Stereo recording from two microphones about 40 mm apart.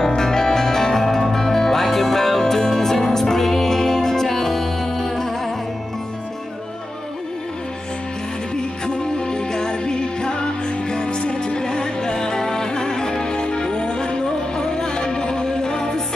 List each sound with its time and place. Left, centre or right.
0.0 s music: centre
8.8 s music: centre